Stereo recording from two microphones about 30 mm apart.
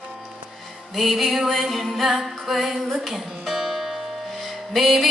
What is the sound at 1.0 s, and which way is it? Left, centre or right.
Music, centre.